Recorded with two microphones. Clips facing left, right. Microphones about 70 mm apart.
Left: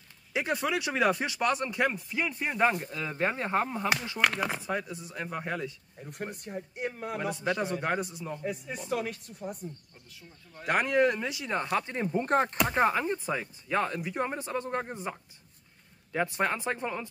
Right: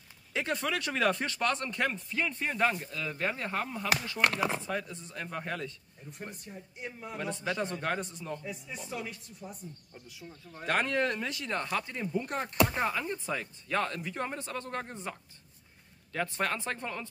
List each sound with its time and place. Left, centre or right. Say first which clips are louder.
0.3 s speech: left 3 dB; centre
2.9 s speech: left 3 dB; left
4.6 s speech: left 2 dB; centre
6.0 s speech: left 5 dB; left
7.2 s speech: left 2 dB; centre
8.8 s speech: left 8 dB; left
10.6 s speech: left 4 dB; centre
11.8 s speech: left 4 dB; left
13.0 s speech: left 4 dB; left